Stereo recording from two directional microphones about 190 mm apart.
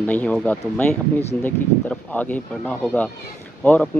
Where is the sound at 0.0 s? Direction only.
10° left (ahead or behind).